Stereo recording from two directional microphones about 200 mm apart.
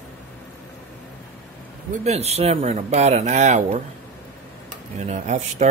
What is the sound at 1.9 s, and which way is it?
Speech, 35° right (ahead or behind).